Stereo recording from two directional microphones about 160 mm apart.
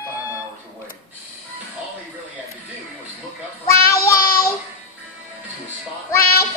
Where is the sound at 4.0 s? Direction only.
70° left (ahead or behind).